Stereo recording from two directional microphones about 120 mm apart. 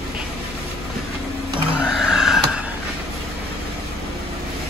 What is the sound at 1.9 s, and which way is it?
Vehicle, 5° right (ahead or behind).